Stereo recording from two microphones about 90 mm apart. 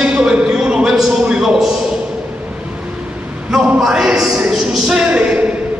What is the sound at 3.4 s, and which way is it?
A man's voice, 5° right (ahead or behind).